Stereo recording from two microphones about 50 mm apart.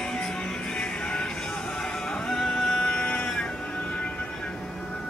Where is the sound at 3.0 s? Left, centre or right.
Left.